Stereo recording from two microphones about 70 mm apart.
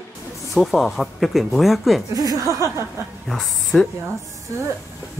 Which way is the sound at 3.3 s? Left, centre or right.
Centre.